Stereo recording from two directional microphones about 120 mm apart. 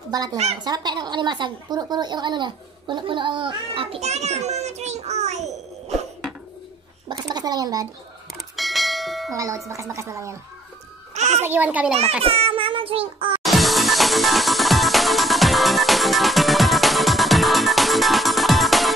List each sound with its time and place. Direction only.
0.1 s a woman's voice: 30° right (ahead or behind); by 5.5 s 70° right (ahead or behind)
7.1 s speech: 35° right (ahead or behind)
8.3 s bell: centre (ahead or behind)
9.3 s a woman's voice: 25° right (ahead or behind)
11.1 s a sound: 70° right (ahead or behind)
11.4 s a child's voice: 15° right (ahead or behind)
12.2 s a woman's voice: 50° right (ahead or behind)
13.4 s music: centre (ahead or behind)